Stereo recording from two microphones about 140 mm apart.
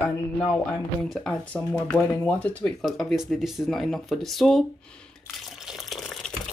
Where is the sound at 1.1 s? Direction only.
5° left (ahead or behind).